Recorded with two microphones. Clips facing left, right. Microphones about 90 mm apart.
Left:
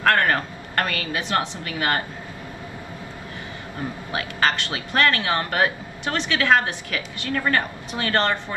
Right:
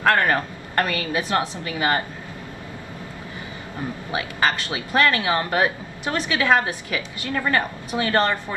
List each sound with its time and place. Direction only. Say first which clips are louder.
0.0 s a woman's voice: right 1 dB; 20° right (ahead or behind)
4.1 s speech: even; 20° right (ahead or behind)